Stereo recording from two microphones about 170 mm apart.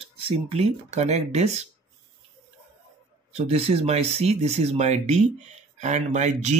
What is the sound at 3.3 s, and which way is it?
Speech, 35° right (ahead or behind).